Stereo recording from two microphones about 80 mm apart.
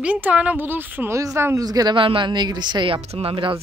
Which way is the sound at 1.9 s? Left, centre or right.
Right.